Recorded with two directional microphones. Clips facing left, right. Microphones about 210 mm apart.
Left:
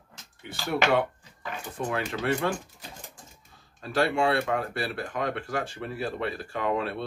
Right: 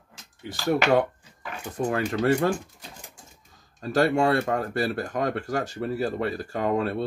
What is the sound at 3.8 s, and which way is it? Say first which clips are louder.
Speech: right 4 dB; 40° right (ahead or behind).